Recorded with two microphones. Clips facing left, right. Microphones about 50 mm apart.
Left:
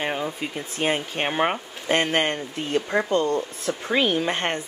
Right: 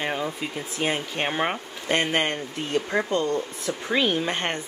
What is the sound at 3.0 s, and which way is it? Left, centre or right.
Speech, left.